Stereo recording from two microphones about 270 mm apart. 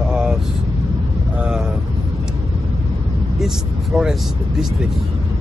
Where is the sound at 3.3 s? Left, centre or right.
Centre.